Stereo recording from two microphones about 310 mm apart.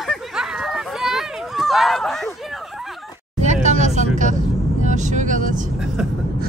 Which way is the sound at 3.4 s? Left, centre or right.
Right.